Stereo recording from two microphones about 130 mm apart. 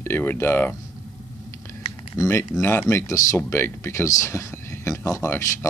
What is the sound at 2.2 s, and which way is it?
Speech, 20° left (ahead or behind).